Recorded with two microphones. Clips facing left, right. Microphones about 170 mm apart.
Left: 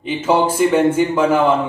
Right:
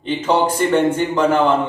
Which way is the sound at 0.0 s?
10° left (ahead or behind).